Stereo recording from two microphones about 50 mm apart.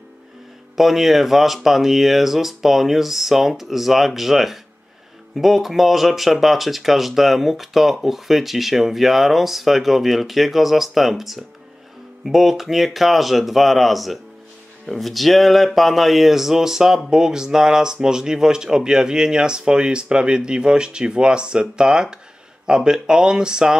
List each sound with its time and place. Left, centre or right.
0.7 s speech: centre